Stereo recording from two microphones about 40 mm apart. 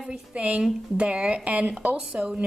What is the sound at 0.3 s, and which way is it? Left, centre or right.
A woman's voice, right.